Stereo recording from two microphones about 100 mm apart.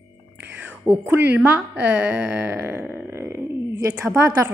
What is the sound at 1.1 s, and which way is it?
Speech, 15° right (ahead or behind).